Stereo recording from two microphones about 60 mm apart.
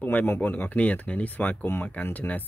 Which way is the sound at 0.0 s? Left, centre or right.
Left.